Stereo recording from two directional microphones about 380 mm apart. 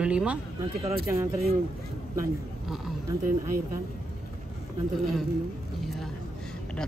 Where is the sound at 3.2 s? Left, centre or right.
Right.